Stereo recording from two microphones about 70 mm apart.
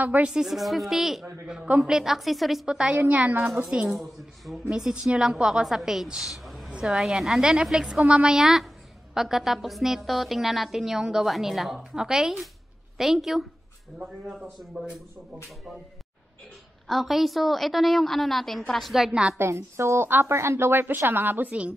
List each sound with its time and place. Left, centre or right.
0.0 s a woman's voice: right
0.3 s a woman's voice: centre
3.0 s a woman's voice: right
3.6 s a woman's voice: centre
4.6 s a woman's voice: centre
16.8 s a woman's voice: centre
19.5 s a woman's voice: right